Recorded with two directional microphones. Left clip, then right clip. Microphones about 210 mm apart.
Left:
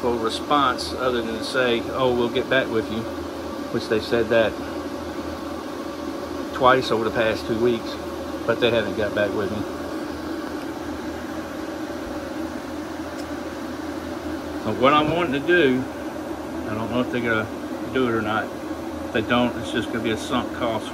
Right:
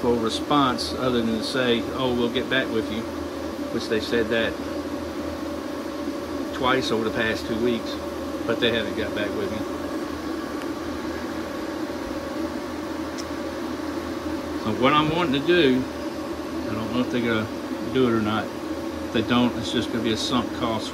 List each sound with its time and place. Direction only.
0.5 s speech: 25° right (ahead or behind)
3.9 s speech: 5° right (ahead or behind)
6.6 s speech: 10° right (ahead or behind)
14.8 s speech: 10° right (ahead or behind)
16.9 s speech: 20° right (ahead or behind)